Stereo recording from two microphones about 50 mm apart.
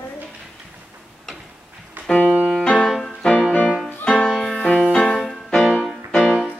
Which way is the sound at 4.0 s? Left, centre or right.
Centre.